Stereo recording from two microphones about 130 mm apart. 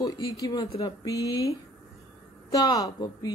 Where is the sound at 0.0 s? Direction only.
30° left (ahead or behind).